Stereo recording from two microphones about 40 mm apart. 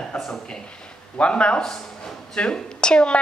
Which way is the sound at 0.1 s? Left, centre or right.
Centre.